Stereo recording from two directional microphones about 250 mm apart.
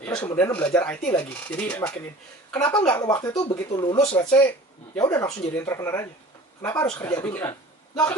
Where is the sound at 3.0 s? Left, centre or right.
Centre.